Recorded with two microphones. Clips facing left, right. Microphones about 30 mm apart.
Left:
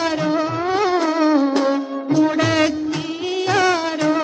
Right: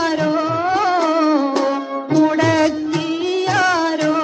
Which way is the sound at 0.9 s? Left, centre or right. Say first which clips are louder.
Right 2 dB; right.